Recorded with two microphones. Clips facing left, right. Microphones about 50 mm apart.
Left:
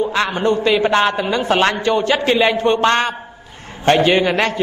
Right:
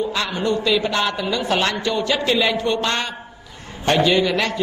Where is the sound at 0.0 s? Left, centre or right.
Left.